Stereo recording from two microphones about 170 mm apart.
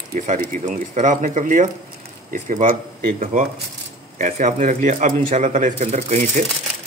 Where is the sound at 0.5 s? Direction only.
50° right (ahead or behind).